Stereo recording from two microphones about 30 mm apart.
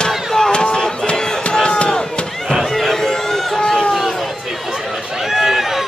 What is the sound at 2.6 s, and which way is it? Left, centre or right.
Run, centre.